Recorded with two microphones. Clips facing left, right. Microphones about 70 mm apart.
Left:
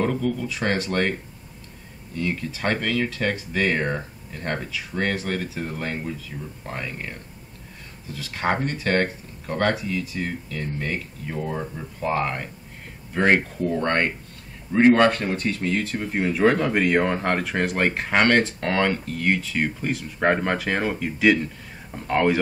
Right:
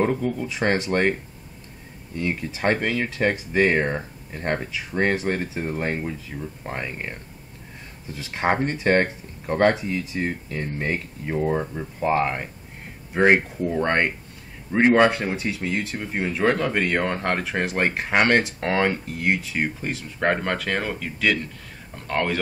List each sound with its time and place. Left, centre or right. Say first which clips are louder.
0.0 s speech: right 1 dB; right
2.1 s speech: even; right; by 22.4 s centre